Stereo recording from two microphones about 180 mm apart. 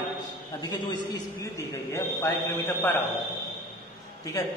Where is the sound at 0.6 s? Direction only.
20° left (ahead or behind).